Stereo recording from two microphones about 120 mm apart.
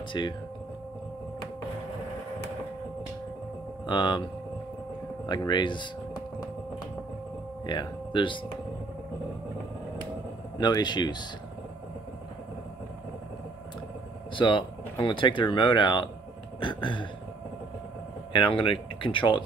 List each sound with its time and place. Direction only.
0.2 s speech: 40° left (ahead or behind)
3.8 s speech: 40° left (ahead or behind)
5.2 s speech: 35° left (ahead or behind)
7.6 s speech: 40° left (ahead or behind)
10.6 s speech: 35° left (ahead or behind)
14.3 s speech: 40° left (ahead or behind)
16.5 s a sound: 45° left (ahead or behind)
18.3 s speech: 45° left (ahead or behind)